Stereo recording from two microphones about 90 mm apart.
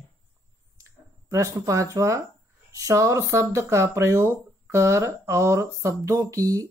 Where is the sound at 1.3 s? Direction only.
35° right (ahead or behind).